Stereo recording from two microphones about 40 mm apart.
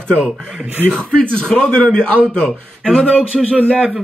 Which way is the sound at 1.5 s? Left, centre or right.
Centre.